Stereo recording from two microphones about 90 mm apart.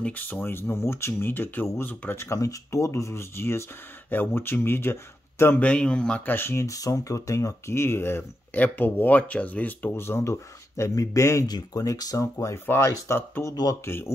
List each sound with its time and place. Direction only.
0.0 s speech: 20° left (ahead or behind)
5.6 s speech: 10° left (ahead or behind); by 14.0 s 25° left (ahead or behind)